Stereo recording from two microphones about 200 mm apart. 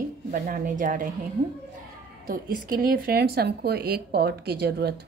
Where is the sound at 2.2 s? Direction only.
45° right (ahead or behind).